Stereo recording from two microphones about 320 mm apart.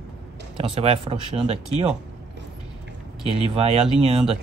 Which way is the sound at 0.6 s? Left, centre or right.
Centre.